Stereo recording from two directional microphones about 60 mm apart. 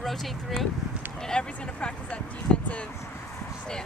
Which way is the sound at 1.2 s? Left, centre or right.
Centre.